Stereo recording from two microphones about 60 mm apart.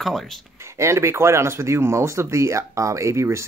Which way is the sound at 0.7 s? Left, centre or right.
Right.